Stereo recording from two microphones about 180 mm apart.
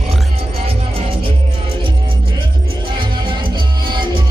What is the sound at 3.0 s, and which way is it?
Music, 25° right (ahead or behind).